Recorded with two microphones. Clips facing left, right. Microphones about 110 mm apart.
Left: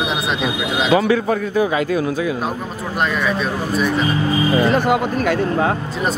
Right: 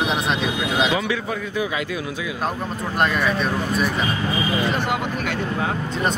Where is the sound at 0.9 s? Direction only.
40° left (ahead or behind).